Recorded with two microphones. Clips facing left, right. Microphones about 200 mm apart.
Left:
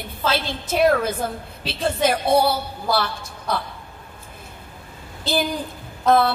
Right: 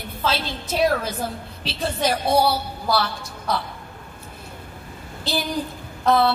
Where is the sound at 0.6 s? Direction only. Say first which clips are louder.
Left 3 dB; 55° left (ahead or behind).